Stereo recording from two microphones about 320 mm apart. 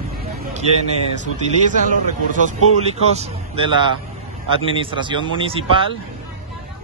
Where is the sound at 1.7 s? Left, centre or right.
Right.